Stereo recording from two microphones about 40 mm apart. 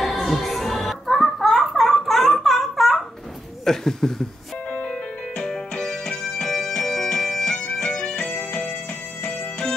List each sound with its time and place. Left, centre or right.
0.0 s music: centre
3.6 s a sound: centre
4.6 s music: left
5.4 s music: centre
7.2 s bagpipes: centre
7.5 s music: left